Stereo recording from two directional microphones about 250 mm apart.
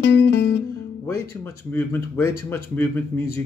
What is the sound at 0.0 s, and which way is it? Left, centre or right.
Music, left.